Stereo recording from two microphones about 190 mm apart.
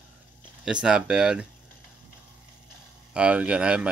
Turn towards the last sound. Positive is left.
turn(degrees=-5)  # may be behind; listen again after turning